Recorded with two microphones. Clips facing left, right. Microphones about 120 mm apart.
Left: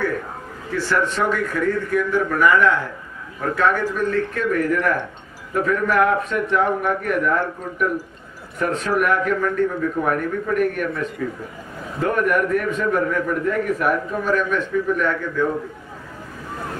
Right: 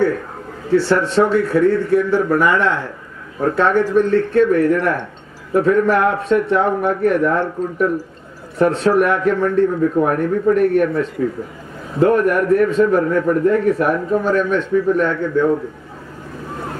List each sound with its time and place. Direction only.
0.7 s a man's voice: 30° right (ahead or behind)
8.5 s a man's voice: 30° right (ahead or behind)